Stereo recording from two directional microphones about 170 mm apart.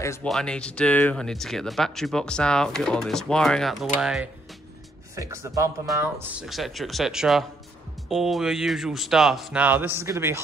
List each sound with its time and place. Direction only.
0.2 s speech: 5° left (ahead or behind)
5.1 s speech: 15° right (ahead or behind)
6.4 s speech: centre (ahead or behind)